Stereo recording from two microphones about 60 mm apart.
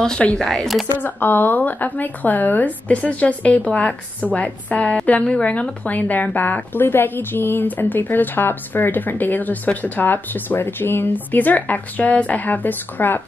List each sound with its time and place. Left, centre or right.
0.2 s speech: centre
0.9 s speech: left